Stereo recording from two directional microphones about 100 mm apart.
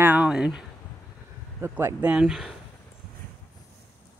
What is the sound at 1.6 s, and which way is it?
Speech, 25° right (ahead or behind).